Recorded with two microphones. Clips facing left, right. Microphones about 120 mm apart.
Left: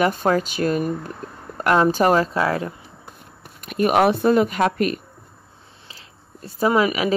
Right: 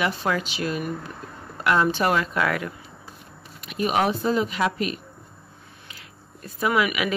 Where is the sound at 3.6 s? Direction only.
55° left (ahead or behind).